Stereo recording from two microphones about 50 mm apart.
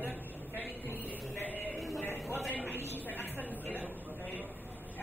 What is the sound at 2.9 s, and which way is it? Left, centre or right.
Speech, left.